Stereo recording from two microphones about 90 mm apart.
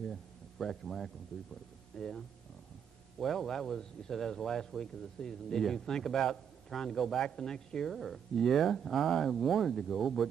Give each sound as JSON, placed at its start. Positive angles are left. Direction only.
{"t": 0.0, "sound": "a man's voice", "side_deg": 5}